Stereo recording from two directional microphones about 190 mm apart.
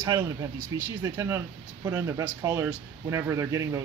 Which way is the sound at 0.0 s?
20° right (ahead or behind).